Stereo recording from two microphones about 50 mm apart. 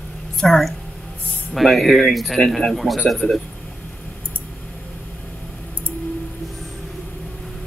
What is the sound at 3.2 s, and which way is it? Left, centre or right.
Speech, left.